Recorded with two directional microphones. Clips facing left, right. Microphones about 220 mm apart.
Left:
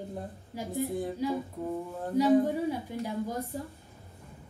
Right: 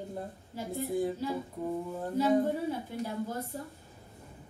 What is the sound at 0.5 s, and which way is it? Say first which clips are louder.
Speech: left 1 dB; 15° left (ahead or behind).